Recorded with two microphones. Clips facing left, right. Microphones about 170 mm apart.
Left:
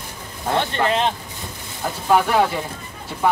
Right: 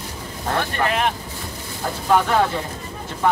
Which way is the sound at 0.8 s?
25° left (ahead or behind).